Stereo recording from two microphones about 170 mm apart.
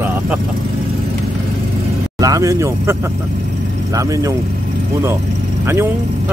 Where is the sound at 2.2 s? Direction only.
20° right (ahead or behind).